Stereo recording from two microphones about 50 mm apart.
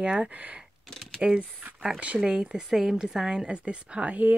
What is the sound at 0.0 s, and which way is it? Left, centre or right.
Speech, right.